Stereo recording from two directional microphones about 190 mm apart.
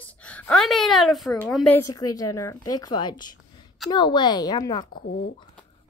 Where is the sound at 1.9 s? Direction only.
20° left (ahead or behind).